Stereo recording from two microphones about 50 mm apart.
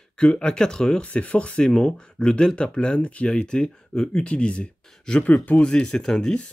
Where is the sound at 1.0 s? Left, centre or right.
Left.